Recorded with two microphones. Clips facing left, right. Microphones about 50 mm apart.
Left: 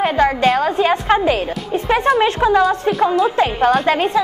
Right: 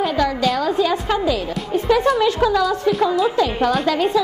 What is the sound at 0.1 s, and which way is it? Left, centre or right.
A woman's voice, left.